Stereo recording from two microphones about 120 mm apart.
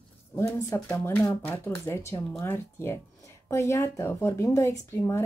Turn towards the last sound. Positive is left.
turn(degrees=20)  # may be behind; listen again after turning